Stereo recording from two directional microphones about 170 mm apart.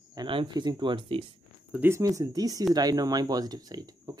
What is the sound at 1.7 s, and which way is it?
Speech, 15° right (ahead or behind).